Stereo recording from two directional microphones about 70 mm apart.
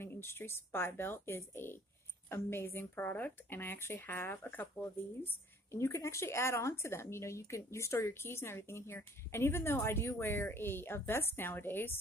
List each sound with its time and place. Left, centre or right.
0.0 s a woman's voice: left
5.2 s a woman's voice: left